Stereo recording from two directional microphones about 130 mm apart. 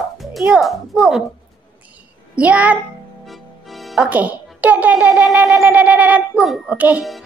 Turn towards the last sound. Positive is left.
turn(degrees=-10)  # may be behind; listen again after turning